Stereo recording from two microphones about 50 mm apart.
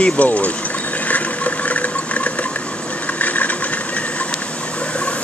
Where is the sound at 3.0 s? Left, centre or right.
Left.